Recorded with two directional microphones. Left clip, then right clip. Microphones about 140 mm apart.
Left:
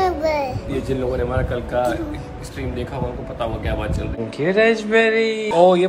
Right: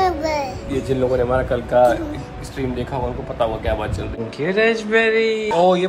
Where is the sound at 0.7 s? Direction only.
Centre (ahead or behind).